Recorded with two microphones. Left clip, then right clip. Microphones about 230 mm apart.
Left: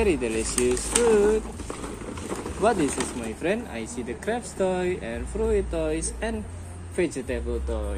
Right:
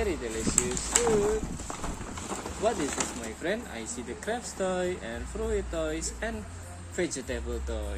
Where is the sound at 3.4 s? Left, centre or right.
Centre.